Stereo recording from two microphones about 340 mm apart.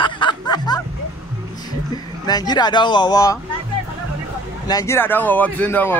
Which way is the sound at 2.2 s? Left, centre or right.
Centre.